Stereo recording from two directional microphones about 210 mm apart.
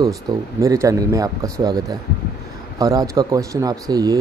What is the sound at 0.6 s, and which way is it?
Speech, 15° right (ahead or behind).